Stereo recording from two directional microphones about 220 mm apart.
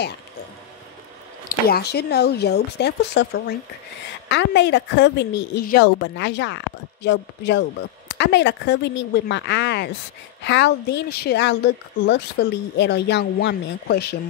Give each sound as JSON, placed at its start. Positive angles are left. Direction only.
{"t": 1.5, "sound": "a woman's voice", "side_deg": 45}